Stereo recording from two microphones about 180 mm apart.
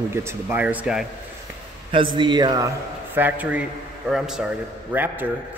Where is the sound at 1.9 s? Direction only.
25° right (ahead or behind).